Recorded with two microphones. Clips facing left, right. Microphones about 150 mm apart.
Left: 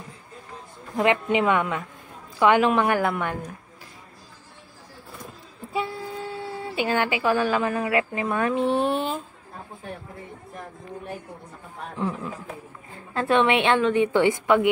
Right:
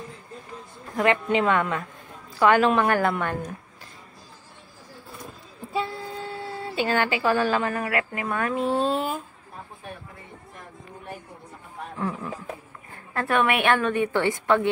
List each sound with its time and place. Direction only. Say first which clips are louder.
0.9 s a woman's voice: left 1 dB; 15° left (ahead or behind)
5.7 s speech: even; 10° left (ahead or behind)
12.9 s a woman's voice: left 3 dB; 20° left (ahead or behind)